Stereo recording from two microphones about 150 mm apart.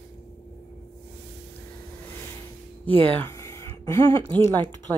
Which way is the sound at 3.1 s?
15° left (ahead or behind).